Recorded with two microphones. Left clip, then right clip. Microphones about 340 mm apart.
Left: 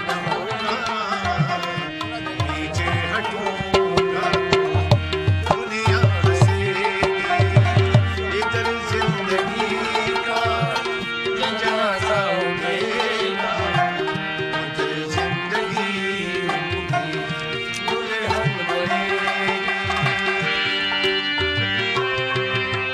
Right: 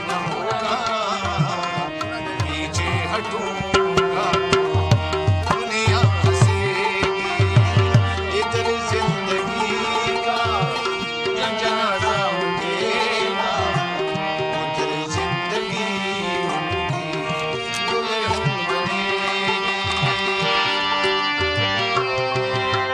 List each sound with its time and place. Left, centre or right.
3.7 s music: centre
20.1 s music: centre